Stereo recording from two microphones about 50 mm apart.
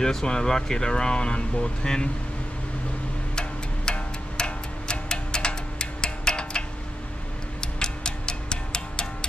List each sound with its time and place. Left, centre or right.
0.0 s speech: centre
3.3 s music: centre
7.6 s music: centre